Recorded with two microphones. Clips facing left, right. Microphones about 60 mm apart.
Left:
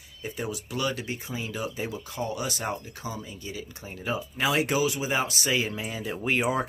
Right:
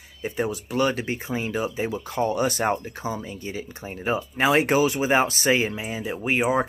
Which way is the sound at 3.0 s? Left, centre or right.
Right.